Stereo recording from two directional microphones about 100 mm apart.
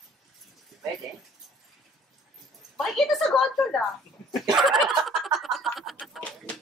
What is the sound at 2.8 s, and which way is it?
Speech, centre (ahead or behind).